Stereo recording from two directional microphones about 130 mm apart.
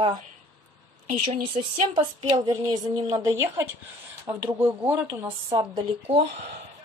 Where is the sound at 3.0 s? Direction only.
25° right (ahead or behind).